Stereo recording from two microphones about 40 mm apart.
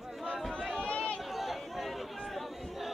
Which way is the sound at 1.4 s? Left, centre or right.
Centre.